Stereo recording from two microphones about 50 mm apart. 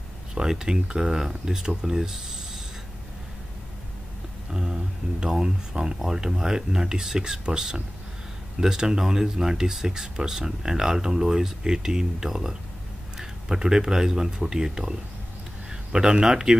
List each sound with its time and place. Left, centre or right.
0.3 s speech: centre
4.5 s a sound: centre
5.2 s speech: centre